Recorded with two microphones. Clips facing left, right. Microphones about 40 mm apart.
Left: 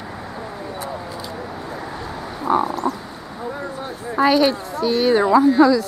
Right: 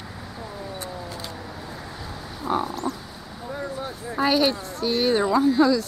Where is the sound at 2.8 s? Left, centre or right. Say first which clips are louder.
Left 6 dB; centre.